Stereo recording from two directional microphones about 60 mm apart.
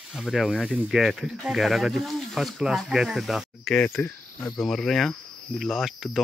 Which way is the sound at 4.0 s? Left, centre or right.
Centre.